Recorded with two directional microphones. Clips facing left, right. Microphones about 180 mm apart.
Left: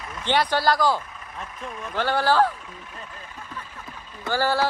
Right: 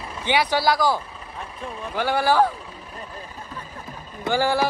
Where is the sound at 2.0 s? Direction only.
10° right (ahead or behind).